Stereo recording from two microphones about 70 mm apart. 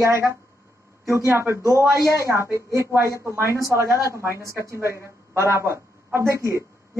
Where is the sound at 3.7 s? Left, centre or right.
Right.